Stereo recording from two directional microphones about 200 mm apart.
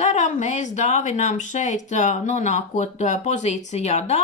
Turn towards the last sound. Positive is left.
turn(degrees=35)  # may be behind; listen again after turning